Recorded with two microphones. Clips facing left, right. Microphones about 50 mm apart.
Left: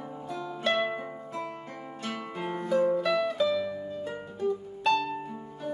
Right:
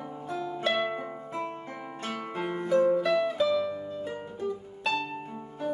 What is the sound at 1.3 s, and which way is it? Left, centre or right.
Music, right.